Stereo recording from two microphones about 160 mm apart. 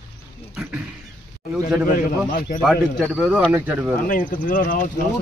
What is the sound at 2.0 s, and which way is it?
Speech, 60° left (ahead or behind).